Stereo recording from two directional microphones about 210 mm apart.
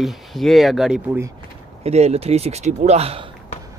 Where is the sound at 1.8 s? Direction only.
30° right (ahead or behind).